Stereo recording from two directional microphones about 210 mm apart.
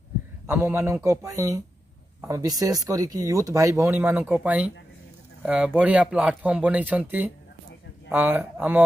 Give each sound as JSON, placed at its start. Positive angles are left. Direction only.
{"t": 0.5, "sound": "speech", "side_deg": -10}